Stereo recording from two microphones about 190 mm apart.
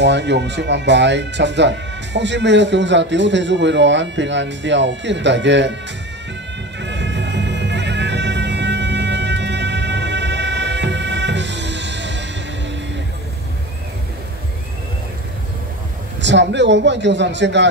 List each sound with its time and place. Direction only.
0.0 s speech: 65° right (ahead or behind)
6.8 s music: 65° right (ahead or behind)
16.2 s speech: 70° right (ahead or behind)